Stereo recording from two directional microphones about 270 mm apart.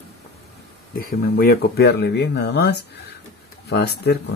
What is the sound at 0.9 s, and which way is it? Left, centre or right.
Speech, left.